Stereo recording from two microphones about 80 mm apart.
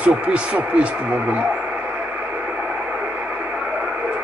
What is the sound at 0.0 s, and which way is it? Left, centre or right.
Speech, centre.